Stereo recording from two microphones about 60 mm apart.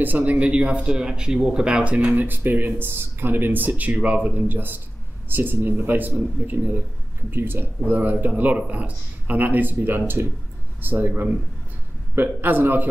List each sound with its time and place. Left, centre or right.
0.0 s speech: right
2.2 s speech: right